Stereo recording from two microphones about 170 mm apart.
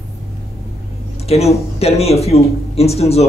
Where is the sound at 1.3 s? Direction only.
35° left (ahead or behind).